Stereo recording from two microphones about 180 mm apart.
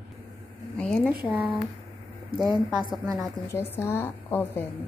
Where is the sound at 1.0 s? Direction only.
10° right (ahead or behind).